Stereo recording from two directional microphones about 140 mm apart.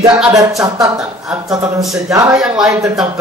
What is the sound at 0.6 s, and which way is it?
Speech, 25° right (ahead or behind).